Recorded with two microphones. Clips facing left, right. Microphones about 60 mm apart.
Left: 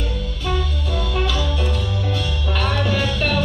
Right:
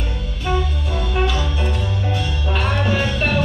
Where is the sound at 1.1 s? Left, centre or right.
Right.